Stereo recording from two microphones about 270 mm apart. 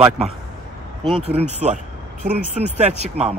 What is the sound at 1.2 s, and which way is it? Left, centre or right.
Speech, right.